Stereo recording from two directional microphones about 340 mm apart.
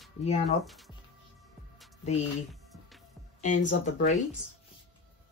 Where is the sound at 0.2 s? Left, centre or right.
Centre.